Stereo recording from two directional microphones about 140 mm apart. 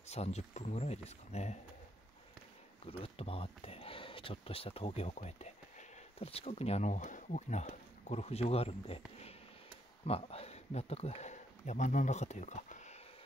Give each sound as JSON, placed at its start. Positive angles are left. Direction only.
{"t": 0.0, "sound": "speech", "side_deg": 50}
{"t": 2.9, "sound": "speech", "side_deg": 45}